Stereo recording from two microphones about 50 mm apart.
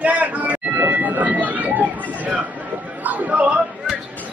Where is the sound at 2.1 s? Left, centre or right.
Right.